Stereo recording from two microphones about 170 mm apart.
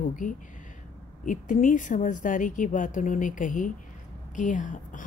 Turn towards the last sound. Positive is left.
turn(degrees=50)  # may be behind; listen again after turning